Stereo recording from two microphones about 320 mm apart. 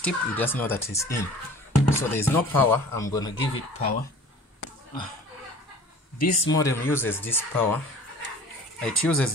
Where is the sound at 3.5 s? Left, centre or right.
Left.